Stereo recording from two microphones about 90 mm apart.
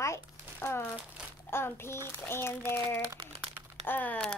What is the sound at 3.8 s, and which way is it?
Speech, 20° left (ahead or behind).